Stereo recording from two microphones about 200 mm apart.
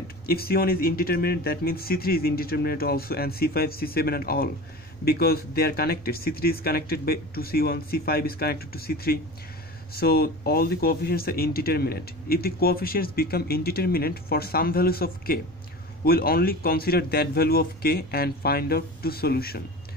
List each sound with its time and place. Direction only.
0.3 s speech: 50° left (ahead or behind)